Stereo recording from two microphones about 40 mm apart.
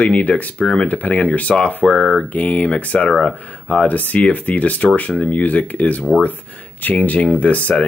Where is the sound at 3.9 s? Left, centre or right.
Left.